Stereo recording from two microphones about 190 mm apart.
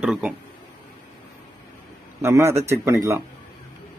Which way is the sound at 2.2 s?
15° right (ahead or behind).